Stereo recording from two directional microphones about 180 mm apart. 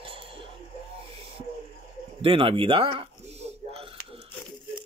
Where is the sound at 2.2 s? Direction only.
30° right (ahead or behind).